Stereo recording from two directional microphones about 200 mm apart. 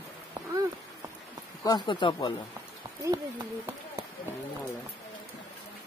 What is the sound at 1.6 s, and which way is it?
Speech, 20° left (ahead or behind).